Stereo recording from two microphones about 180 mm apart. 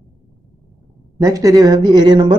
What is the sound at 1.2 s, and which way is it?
Speech, 20° right (ahead or behind).